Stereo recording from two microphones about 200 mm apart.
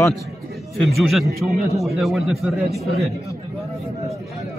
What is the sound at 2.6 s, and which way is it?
Speech, 30° right (ahead or behind).